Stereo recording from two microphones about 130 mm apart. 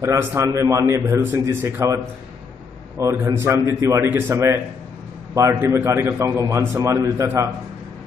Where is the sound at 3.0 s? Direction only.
25° right (ahead or behind).